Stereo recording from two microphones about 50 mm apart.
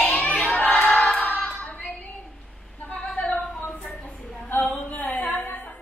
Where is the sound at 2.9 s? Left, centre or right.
Left.